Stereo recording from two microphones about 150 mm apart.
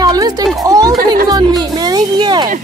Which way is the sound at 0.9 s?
75° right (ahead or behind).